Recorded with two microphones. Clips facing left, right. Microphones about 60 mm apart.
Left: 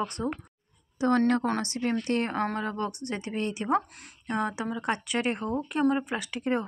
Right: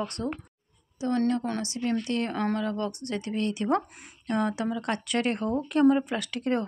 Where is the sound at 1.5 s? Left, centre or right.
Left.